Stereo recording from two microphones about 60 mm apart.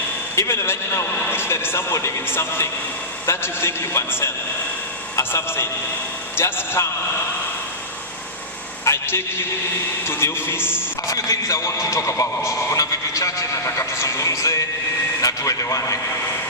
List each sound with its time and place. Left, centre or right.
0.4 s a man's voice: left
8.8 s a sound: left
10.0 s a man's voice: left
11.1 s a man's voice: left
14.0 s a man's voice: left